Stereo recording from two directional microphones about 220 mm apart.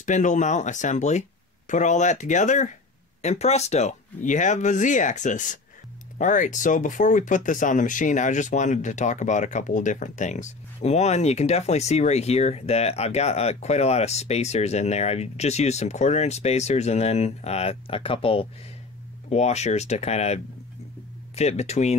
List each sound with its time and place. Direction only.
0.0 s speech: 35° left (ahead or behind)
21.4 s speech: 30° left (ahead or behind)